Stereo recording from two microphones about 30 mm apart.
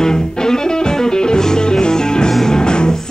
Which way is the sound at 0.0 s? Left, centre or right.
Left.